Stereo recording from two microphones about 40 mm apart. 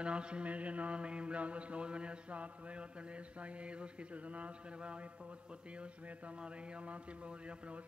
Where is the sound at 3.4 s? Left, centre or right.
Right.